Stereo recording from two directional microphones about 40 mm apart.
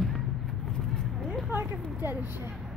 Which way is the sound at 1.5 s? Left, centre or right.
Right.